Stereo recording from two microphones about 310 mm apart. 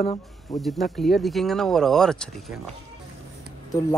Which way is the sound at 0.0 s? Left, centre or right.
Centre.